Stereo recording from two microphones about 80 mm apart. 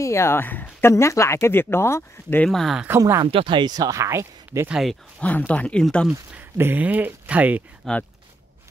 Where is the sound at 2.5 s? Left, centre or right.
Centre.